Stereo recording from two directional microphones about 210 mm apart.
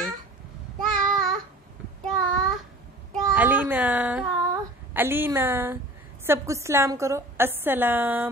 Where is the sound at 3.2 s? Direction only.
10° right (ahead or behind).